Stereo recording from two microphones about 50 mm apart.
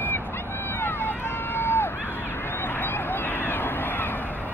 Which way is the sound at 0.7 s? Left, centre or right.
Left.